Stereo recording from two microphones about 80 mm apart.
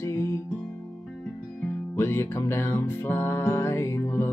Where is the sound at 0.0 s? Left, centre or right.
Left.